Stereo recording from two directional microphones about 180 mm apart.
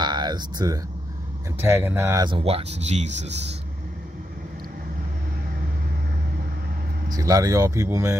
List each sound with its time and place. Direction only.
0.0 s a sound: 25° right (ahead or behind)
1.6 s speech: 10° right (ahead or behind)
2.2 s speech: 30° right (ahead or behind)
7.1 s speech: 20° right (ahead or behind)